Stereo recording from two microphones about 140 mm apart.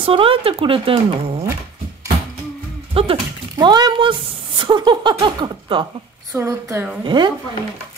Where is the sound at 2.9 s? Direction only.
40° right (ahead or behind).